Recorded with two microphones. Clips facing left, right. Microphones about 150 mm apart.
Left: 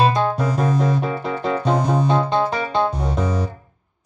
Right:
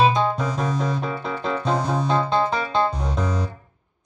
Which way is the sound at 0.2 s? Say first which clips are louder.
Left 3 dB; 5° left (ahead or behind).